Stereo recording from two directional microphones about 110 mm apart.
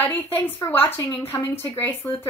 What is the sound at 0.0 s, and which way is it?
Speech, 20° left (ahead or behind).